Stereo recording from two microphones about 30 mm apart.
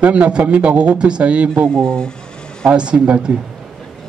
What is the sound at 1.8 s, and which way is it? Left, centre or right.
Speech, left.